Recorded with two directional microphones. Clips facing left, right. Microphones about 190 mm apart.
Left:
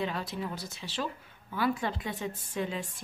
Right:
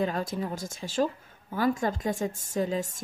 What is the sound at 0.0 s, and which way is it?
Speech, 45° right (ahead or behind).